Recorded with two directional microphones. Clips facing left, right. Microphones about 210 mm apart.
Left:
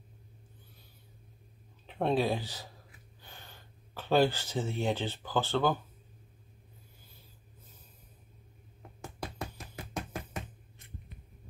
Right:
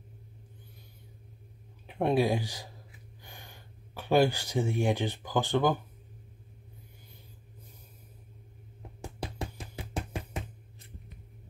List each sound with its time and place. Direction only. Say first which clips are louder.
1.9 s speech: right 3 dB; 15° right (ahead or behind)
9.2 s music: right 2 dB; 30° right (ahead or behind)